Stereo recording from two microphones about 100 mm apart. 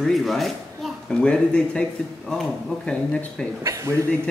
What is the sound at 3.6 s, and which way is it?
Speech, 30° right (ahead or behind).